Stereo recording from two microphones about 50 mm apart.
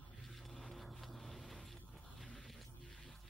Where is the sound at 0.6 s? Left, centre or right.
Centre.